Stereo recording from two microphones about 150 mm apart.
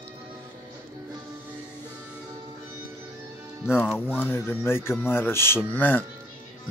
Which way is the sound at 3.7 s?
15° left (ahead or behind).